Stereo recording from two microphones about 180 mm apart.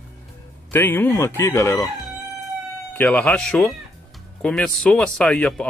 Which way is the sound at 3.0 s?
10° left (ahead or behind).